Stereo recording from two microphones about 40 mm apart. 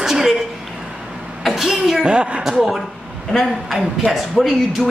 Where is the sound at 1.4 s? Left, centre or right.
Centre.